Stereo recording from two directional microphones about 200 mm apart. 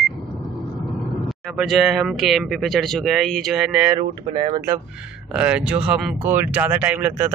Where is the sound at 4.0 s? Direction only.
25° right (ahead or behind).